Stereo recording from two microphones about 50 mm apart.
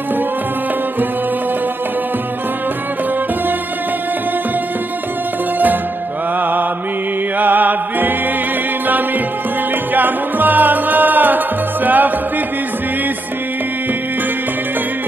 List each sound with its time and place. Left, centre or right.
7.3 s music: right
9.9 s music: right